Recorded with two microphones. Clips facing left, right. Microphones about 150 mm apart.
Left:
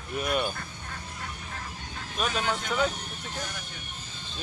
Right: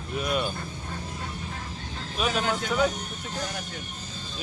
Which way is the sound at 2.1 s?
5° right (ahead or behind).